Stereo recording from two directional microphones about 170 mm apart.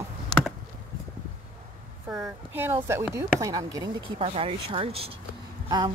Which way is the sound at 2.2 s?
10° right (ahead or behind).